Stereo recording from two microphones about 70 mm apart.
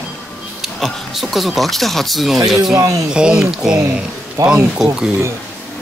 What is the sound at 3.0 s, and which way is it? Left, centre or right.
Speech, centre.